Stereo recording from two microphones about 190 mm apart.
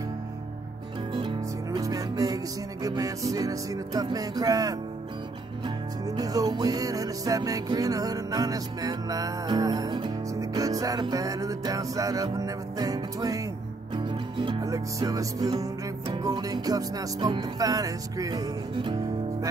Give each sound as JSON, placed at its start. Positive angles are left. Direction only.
{"t": 1.1, "sound": "music", "side_deg": -25}
{"t": 6.0, "sound": "music", "side_deg": -20}